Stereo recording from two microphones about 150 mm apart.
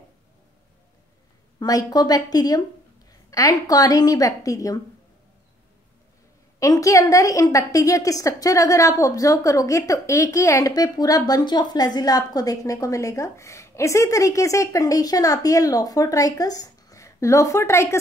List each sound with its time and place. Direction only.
1.6 s a woman's voice: 25° left (ahead or behind)
6.6 s a woman's voice: 20° left (ahead or behind)